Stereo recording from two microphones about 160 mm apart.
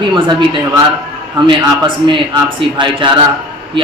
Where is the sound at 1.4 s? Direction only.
30° right (ahead or behind).